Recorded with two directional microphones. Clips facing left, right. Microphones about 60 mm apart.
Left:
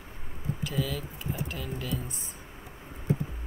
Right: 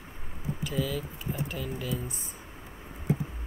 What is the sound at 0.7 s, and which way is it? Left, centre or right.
Speech, centre.